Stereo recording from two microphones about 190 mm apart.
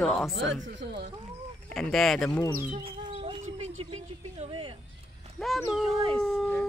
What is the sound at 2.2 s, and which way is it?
Speech, 15° left (ahead or behind).